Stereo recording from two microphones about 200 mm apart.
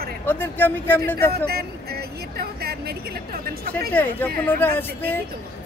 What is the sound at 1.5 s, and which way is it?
Speech, 50° right (ahead or behind).